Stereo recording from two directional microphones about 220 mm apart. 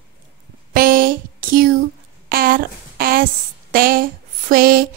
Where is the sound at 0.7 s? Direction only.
40° right (ahead or behind).